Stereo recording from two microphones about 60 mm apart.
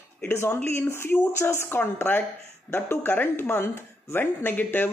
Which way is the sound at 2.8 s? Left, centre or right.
Left.